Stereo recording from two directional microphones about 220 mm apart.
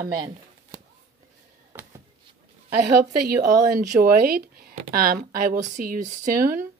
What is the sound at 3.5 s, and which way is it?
Speech, 40° right (ahead or behind).